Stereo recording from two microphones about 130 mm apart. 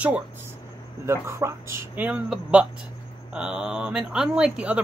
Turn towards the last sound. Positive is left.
turn(degrees=-10)  # may be behind; listen again after turning